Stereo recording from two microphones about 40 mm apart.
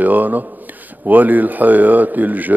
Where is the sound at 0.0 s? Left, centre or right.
Right.